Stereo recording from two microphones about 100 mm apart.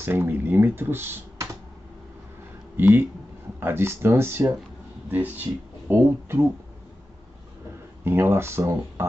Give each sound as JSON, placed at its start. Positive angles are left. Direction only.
{"t": 0.0, "sound": "speech", "side_deg": -20}
{"t": 2.8, "sound": "speech", "side_deg": -20}
{"t": 8.0, "sound": "speech", "side_deg": -25}